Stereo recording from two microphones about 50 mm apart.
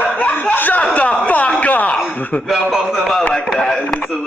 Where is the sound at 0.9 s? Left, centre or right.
Left.